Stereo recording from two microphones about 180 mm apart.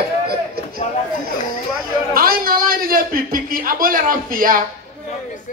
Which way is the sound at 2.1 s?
55° right (ahead or behind).